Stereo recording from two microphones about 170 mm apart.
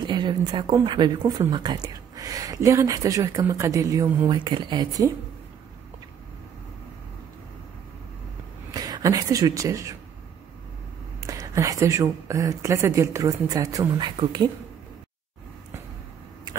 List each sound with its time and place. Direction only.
0.0 s speech: 25° right (ahead or behind)
1.2 s speech: 15° right (ahead or behind)
8.7 s speech: 20° right (ahead or behind)
11.2 s speech: 20° right (ahead or behind)